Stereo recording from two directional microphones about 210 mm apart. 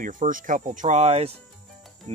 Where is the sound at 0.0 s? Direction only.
40° right (ahead or behind).